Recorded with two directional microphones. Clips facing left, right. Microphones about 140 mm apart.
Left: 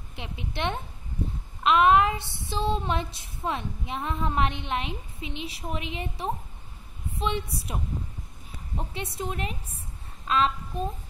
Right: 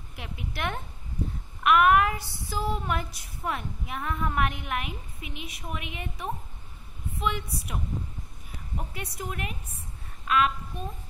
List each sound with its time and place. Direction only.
0.1 s female singing: 25° left (ahead or behind)
10.2 s a woman's voice: 25° left (ahead or behind)